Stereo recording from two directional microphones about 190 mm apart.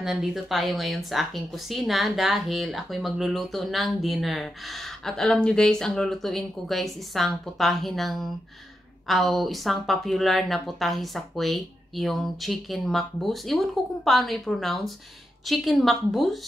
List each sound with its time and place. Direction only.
0.0 s speech: centre (ahead or behind)